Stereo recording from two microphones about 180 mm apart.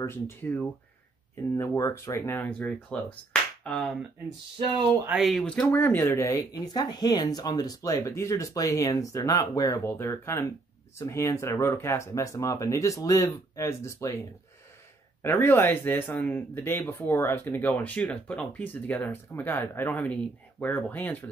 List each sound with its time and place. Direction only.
0.0 s speech: 10° left (ahead or behind)
3.6 s a sound: 5° left (ahead or behind)
5.0 s speech: 5° right (ahead or behind); by 14.1 s 15° left (ahead or behind)
15.2 s speech: 10° left (ahead or behind)